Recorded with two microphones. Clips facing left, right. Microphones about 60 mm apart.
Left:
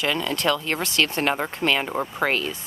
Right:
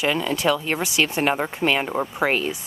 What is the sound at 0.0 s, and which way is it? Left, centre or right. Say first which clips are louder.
Speech: right 2 dB; centre.